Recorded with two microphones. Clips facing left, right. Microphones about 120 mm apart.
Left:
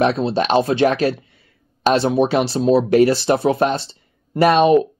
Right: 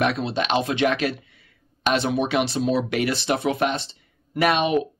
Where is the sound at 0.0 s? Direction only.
35° left (ahead or behind).